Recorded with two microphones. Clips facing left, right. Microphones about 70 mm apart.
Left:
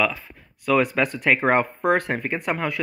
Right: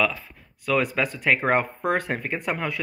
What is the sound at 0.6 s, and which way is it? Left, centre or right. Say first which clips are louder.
Speech: left 3 dB; centre.